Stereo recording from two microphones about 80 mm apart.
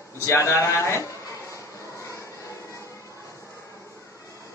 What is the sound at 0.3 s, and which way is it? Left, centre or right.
Speech, left.